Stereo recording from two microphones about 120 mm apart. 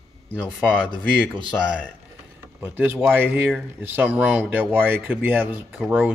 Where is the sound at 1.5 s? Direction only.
5° right (ahead or behind).